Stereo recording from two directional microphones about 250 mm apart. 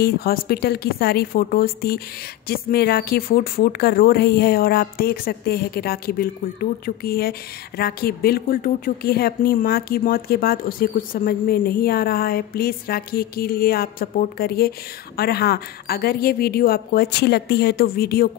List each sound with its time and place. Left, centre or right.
0.0 s speech: left